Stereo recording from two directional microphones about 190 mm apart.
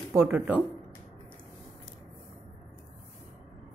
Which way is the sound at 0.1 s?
10° right (ahead or behind).